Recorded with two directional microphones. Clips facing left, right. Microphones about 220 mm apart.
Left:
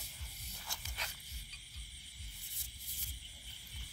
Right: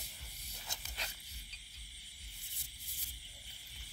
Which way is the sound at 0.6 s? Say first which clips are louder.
Right 1 dB; 20° right (ahead or behind).